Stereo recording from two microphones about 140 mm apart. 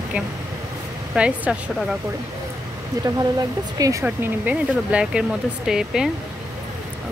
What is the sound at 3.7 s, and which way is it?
Speech, 25° right (ahead or behind).